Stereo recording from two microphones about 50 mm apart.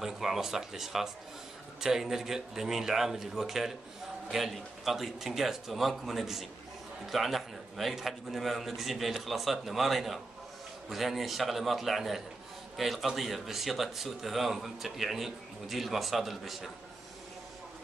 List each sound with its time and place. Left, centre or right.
0.0 s a man's voice: centre